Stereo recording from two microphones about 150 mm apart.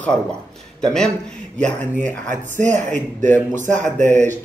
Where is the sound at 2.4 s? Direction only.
55° right (ahead or behind).